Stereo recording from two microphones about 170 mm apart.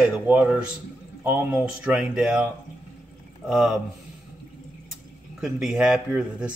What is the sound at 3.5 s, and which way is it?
Speech, 5° right (ahead or behind).